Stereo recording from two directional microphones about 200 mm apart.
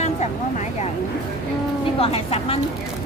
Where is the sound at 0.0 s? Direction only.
35° left (ahead or behind).